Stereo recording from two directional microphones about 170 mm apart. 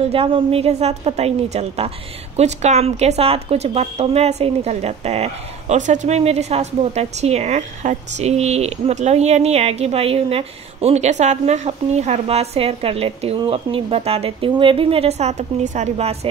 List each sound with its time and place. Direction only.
0.1 s speech: 35° right (ahead or behind)